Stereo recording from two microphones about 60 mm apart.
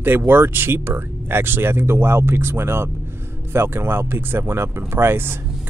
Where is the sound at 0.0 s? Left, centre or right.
Right.